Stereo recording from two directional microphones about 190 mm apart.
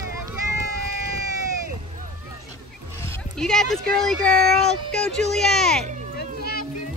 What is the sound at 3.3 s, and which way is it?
Speech, 5° left (ahead or behind).